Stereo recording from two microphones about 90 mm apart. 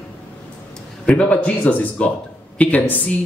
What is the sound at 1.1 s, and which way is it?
Speech, 15° left (ahead or behind).